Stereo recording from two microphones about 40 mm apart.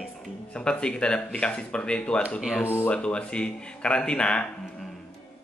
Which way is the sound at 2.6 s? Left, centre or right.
Left.